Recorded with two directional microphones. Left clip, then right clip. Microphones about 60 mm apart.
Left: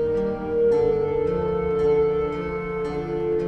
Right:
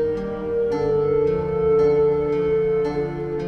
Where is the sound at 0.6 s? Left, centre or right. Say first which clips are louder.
Left 1 dB; right.